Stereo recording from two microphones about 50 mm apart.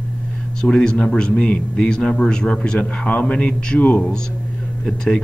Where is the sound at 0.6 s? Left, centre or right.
Centre.